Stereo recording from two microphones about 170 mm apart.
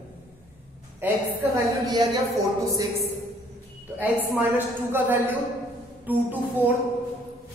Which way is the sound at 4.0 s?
10° right (ahead or behind).